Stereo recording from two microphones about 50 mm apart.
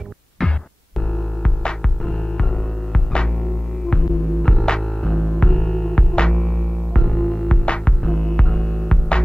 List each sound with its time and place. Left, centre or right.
0.4 s music: centre
1.1 s hum: centre
3.9 s throbbing: centre